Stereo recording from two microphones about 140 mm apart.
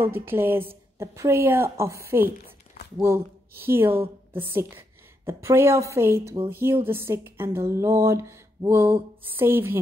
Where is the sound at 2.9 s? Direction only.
20° right (ahead or behind).